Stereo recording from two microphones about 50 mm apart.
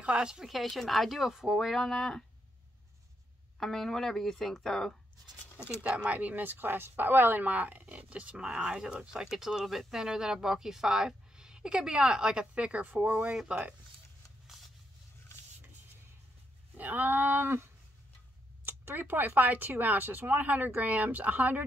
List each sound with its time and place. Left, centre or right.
0.0 s speech: centre
0.5 s speech: centre
3.5 s speech: centre
6.0 s speech: right
12.8 s speech: right
13.5 s speech: right
16.7 s speech: right
18.7 s speech: right